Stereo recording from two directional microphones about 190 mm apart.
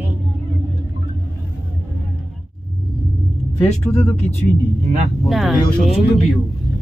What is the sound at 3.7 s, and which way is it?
Speech, 35° left (ahead or behind).